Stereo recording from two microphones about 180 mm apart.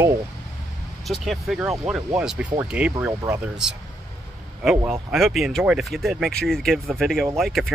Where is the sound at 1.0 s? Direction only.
Centre (ahead or behind).